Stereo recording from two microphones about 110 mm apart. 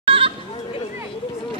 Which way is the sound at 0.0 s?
55° right (ahead or behind).